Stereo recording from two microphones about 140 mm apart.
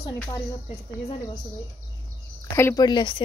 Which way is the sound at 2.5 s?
15° left (ahead or behind).